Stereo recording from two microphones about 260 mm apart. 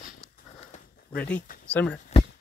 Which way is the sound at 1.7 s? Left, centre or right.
Centre.